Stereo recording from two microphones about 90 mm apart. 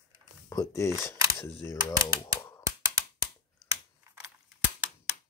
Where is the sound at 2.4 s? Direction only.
35° left (ahead or behind).